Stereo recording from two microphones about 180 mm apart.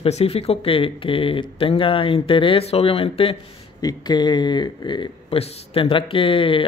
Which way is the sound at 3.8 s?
20° left (ahead or behind).